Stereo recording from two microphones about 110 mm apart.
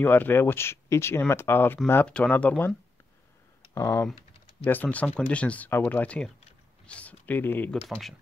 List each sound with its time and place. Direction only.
0.0 s speech: 20° left (ahead or behind)
2.0 s speech: 10° left (ahead or behind)
3.7 s speech: 25° left (ahead or behind)
4.8 s speech: 10° left (ahead or behind)